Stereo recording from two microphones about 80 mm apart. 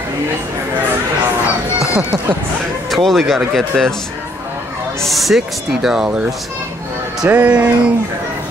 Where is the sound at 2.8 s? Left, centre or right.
Centre.